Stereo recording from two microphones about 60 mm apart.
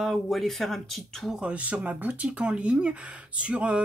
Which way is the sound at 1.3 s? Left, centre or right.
Right.